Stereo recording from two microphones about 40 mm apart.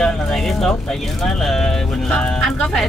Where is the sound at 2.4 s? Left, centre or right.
Centre.